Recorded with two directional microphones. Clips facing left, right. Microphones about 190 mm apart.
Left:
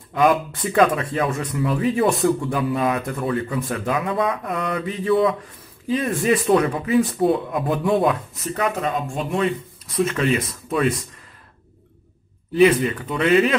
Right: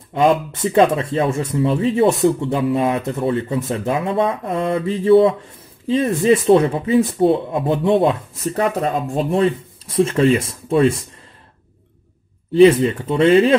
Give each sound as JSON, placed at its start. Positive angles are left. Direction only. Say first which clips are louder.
{"t": 0.1, "sound": "speech", "louder": "right 2 dB", "side_deg": -25}
{"t": 12.5, "sound": "speech", "louder": "right 5 dB", "side_deg": -25}